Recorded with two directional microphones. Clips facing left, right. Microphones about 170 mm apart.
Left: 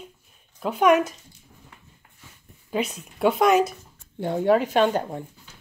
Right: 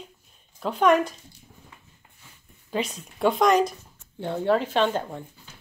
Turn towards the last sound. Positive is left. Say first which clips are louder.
# left 3 dB
turn(degrees=15)  # may be behind; listen again after turning